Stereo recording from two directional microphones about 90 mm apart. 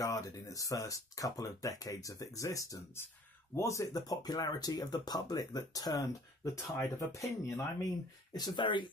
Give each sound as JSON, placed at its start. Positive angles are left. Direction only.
{"t": 0.0, "sound": "speech", "side_deg": 40}
{"t": 8.3, "sound": "speech", "side_deg": 50}